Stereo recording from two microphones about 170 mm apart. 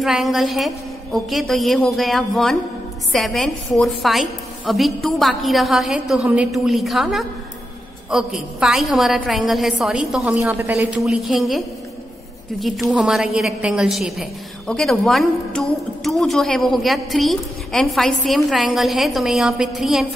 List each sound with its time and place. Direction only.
0.0 s a woman's voice: centre (ahead or behind)
11.0 s a woman's voice: centre (ahead or behind)